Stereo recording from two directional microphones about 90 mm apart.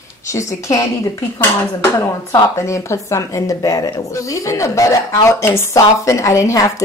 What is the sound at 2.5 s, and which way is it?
Speech, 35° left (ahead or behind).